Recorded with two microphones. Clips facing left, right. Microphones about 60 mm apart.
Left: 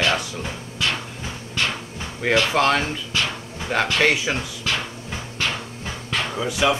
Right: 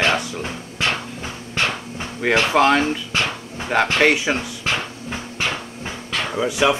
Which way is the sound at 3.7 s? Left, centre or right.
Centre.